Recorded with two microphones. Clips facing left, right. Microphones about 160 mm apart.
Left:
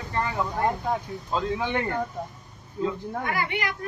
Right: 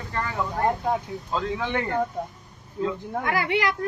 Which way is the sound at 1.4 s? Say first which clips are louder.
Even; 10° left (ahead or behind).